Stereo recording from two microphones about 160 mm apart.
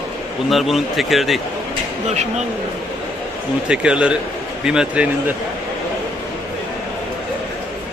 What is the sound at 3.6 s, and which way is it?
A man's voice, 5° right (ahead or behind).